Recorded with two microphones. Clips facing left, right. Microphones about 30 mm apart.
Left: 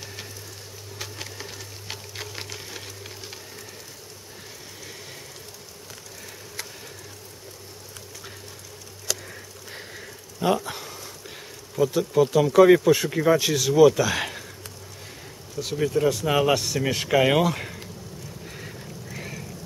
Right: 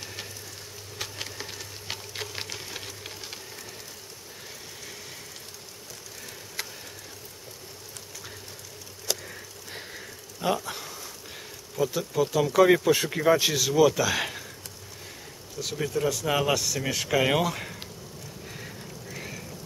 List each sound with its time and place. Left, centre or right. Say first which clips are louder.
0.9 s sewing machine: right 1 dB; centre
9.3 s a sound: left 1 dB; centre
11.7 s speech: left 6 dB; centre
15.5 s speech: left 5 dB; centre
16.5 s speech: left 3 dB; centre
18.4 s a sound: left 2 dB; centre